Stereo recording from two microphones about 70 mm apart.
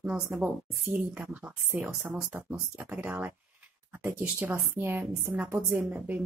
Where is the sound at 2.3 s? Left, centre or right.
Right.